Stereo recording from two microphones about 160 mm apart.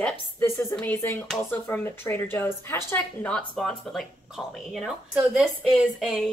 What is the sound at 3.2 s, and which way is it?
A woman's voice, 5° left (ahead or behind).